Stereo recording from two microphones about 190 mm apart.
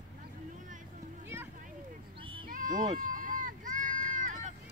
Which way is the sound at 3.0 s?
45° right (ahead or behind).